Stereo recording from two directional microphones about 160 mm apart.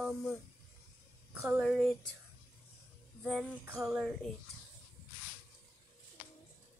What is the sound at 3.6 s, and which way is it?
Speech, 5° right (ahead or behind).